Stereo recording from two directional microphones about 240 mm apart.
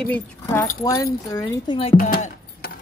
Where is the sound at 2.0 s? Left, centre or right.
Left.